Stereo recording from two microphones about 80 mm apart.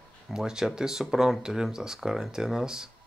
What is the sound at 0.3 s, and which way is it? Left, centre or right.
Speech, centre.